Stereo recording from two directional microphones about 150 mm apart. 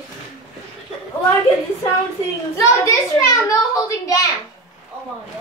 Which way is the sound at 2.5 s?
20° left (ahead or behind).